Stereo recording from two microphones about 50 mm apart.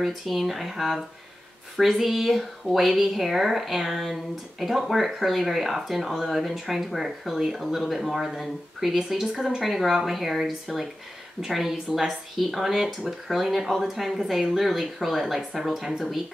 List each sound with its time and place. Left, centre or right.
0.0 s speech: centre